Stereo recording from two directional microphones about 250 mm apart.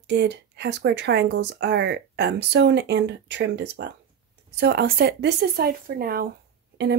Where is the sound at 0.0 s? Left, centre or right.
Right.